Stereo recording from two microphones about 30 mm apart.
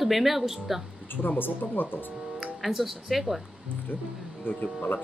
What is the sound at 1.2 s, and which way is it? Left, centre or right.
Speech, left.